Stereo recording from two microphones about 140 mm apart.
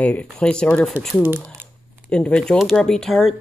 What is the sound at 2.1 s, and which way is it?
Speech, 5° left (ahead or behind).